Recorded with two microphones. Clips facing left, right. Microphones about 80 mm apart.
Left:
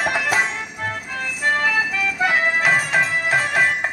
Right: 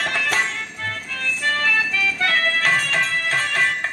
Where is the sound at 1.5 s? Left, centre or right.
Centre.